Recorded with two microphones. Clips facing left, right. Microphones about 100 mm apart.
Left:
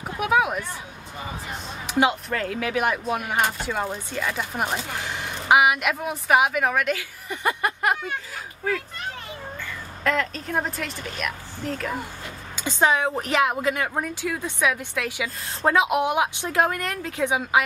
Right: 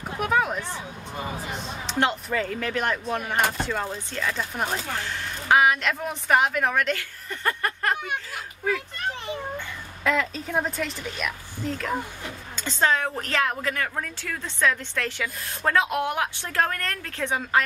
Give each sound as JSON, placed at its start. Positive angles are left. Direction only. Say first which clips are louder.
{"t": 0.2, "sound": "speech", "louder": "left 2 dB", "side_deg": 5}
{"t": 1.9, "sound": "speech", "louder": "left 3 dB", "side_deg": 5}
{"t": 10.0, "sound": "speech", "louder": "even", "side_deg": 0}
{"t": 12.5, "sound": "speech", "louder": "left 2 dB", "side_deg": 15}